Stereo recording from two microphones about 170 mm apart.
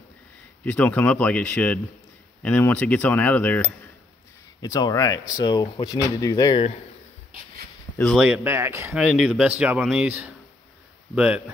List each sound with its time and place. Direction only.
0.7 s speech: 10° left (ahead or behind)
4.6 s speech: 20° left (ahead or behind)
8.0 s speech: centre (ahead or behind)
8.9 s speech: 5° right (ahead or behind)